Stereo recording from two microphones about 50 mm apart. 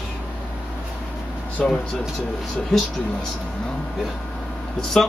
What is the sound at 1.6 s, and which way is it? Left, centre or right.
Speech, centre.